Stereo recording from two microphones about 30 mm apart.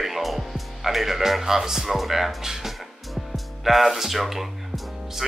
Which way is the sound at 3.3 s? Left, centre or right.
Centre.